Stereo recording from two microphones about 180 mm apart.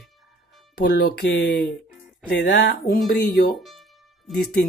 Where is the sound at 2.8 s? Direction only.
55° left (ahead or behind).